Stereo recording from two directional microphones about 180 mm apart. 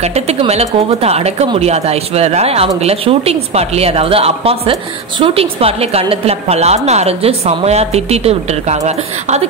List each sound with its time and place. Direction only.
0.0 s a woman's voice: 35° right (ahead or behind)